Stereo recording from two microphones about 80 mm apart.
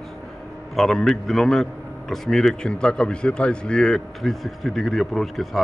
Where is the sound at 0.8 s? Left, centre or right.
Centre.